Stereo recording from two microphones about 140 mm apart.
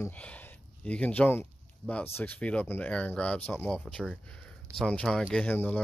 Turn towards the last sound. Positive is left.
turn(degrees=10)  # may be behind; listen again after turning